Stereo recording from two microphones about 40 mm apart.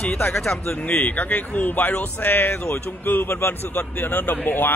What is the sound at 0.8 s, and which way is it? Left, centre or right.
Speech, left.